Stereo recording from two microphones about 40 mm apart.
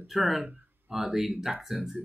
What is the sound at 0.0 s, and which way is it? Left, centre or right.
Speech, centre.